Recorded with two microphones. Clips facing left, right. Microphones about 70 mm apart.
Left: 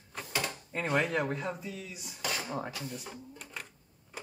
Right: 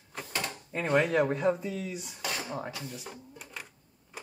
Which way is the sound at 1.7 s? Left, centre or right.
Right.